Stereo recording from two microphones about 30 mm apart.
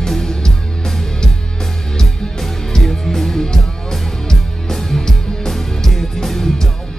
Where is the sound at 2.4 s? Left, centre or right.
Centre.